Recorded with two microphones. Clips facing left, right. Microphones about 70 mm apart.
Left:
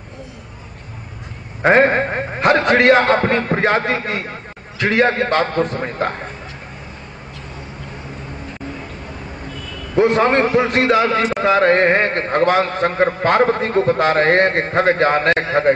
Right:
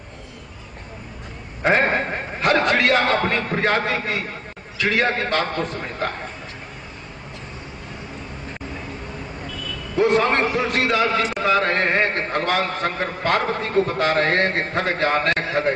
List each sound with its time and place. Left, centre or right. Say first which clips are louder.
1.6 s a man's voice: left 6 dB; left
9.9 s a man's voice: left 4 dB; left